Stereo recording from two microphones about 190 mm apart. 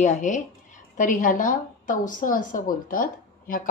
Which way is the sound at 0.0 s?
40° left (ahead or behind).